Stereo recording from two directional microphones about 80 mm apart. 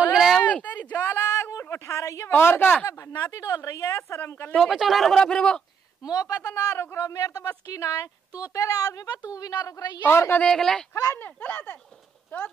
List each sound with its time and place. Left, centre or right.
0.1 s a sound: centre
0.4 s a sound: centre
0.9 s a sound: left
2.3 s speech: left
2.9 s a woman's voice: left
4.6 s speech: centre
6.0 s speech: left
10.0 s speech: left
10.4 s speech: centre
11.1 s speech: left